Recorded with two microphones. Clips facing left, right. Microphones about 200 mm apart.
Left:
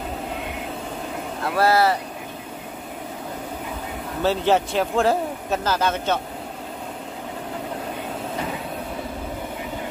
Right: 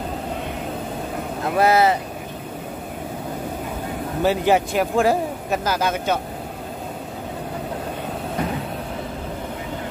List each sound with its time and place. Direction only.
1.4 s speech: 20° right (ahead or behind)
4.2 s speech: 10° right (ahead or behind)